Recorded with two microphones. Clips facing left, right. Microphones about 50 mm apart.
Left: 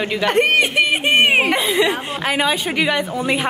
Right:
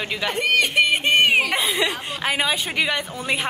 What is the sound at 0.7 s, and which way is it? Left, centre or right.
Speech, centre.